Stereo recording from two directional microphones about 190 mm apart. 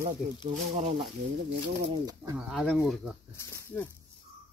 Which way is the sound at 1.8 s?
25° right (ahead or behind).